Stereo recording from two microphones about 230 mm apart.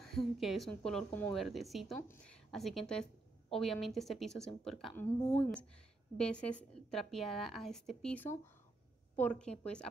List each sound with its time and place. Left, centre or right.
0.0 s a woman's voice: centre